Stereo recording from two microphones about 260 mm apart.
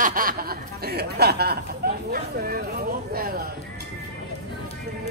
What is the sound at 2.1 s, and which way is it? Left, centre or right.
Speech, right.